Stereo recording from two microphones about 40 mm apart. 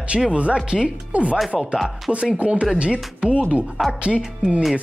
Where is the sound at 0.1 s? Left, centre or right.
Centre.